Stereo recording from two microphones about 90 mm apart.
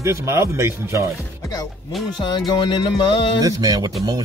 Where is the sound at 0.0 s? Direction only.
30° right (ahead or behind).